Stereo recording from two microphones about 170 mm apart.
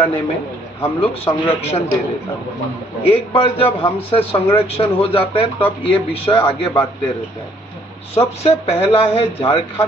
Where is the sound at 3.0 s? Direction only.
30° left (ahead or behind).